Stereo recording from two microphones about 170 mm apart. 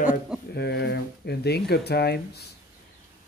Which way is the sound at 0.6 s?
80° left.